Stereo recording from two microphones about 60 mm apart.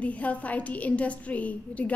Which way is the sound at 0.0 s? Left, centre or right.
Left.